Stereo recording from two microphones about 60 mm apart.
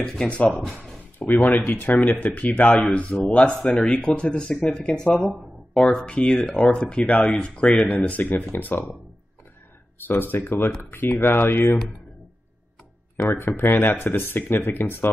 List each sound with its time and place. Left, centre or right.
0.0 s speech: centre
0.3 s speech: left
5.1 s speech: centre
6.0 s speech: centre
10.0 s speech: left
13.3 s speech: left